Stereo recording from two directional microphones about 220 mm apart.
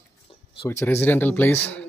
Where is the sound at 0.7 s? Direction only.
10° left (ahead or behind).